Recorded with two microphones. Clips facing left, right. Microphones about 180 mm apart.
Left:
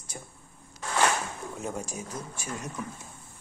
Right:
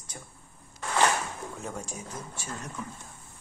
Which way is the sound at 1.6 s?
10° left (ahead or behind).